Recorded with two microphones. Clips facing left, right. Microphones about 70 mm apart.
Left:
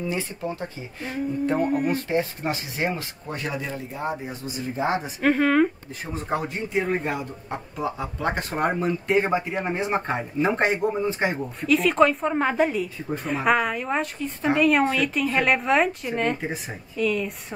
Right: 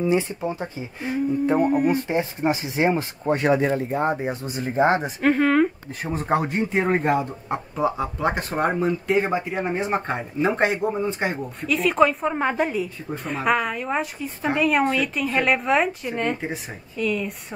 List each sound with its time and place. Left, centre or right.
0.0 s speech: right
1.6 s speech: centre
1.9 s speech: right
5.2 s speech: centre
6.1 s speech: right
7.7 s speech: centre
8.4 s speech: centre